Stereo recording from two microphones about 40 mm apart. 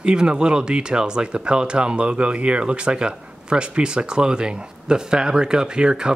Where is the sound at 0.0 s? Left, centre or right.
Right.